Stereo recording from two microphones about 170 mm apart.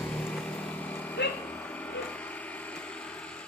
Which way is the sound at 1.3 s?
10° left (ahead or behind).